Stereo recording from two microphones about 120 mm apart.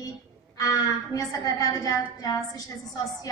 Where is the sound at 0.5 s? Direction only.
30° left (ahead or behind).